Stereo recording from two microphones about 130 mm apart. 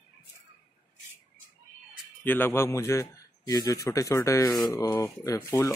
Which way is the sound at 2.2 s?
15° left (ahead or behind).